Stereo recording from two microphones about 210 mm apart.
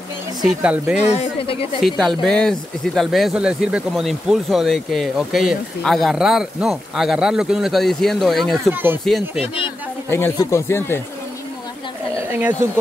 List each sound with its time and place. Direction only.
0.4 s speech: 5° right (ahead or behind)
0.9 s speech: 30° left (ahead or behind)
1.8 s speech: centre (ahead or behind)
10.0 s speech: 10° left (ahead or behind)
12.3 s speech: 10° right (ahead or behind)